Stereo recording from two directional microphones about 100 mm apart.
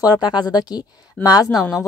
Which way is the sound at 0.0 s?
45° left (ahead or behind).